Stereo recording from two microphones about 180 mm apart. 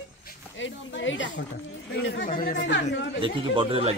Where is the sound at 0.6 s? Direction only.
90° left.